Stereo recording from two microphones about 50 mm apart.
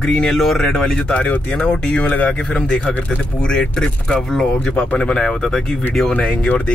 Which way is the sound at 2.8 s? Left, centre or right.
Left.